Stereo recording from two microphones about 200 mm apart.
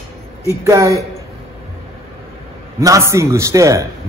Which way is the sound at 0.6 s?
15° right (ahead or behind).